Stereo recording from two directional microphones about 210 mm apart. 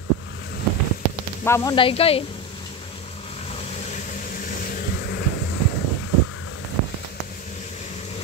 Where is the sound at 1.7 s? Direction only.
25° left (ahead or behind).